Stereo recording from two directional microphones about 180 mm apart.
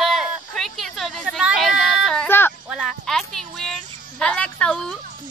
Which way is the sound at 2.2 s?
10° left (ahead or behind).